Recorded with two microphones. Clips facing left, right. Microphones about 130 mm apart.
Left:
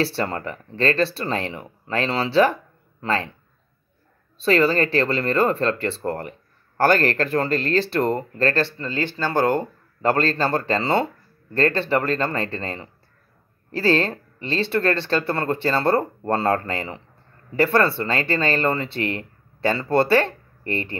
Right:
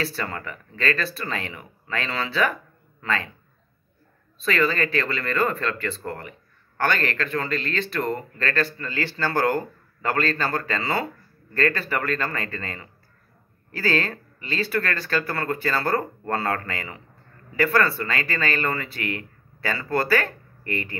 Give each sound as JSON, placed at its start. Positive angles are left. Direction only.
{"t": 0.0, "sound": "speech", "side_deg": 30}
{"t": 4.4, "sound": "speech", "side_deg": 30}